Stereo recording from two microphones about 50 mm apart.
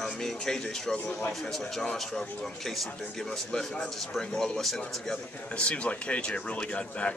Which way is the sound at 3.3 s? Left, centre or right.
Centre.